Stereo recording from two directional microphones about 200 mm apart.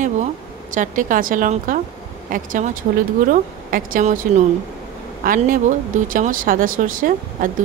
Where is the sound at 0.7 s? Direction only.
40° right (ahead or behind).